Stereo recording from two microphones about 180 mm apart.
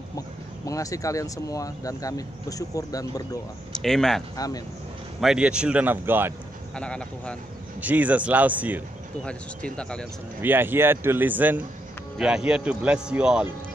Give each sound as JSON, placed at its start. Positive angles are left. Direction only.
{"t": 0.7, "sound": "speech", "side_deg": 20}
{"t": 3.8, "sound": "a man's voice", "side_deg": 0}
{"t": 4.4, "sound": "speech", "side_deg": 20}
{"t": 5.2, "sound": "a man's voice", "side_deg": -5}
{"t": 6.7, "sound": "a man's voice", "side_deg": 5}
{"t": 7.8, "sound": "a man's voice", "side_deg": -10}
{"t": 9.2, "sound": "a man's voice", "side_deg": 5}
{"t": 10.4, "sound": "a man's voice", "side_deg": -10}